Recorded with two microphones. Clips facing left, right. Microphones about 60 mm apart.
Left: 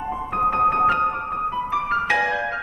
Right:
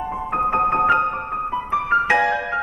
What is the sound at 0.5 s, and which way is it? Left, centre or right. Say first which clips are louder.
Music: right 1 dB; centre.